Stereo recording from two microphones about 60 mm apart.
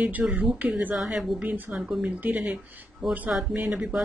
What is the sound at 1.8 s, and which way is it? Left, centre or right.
Speech, centre.